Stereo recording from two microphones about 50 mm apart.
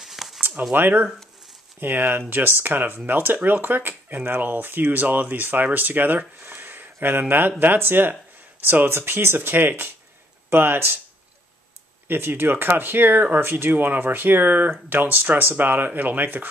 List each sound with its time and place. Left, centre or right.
0.0 s a sound: centre
0.6 s speech: right
8.9 s speech: right
12.1 s speech: right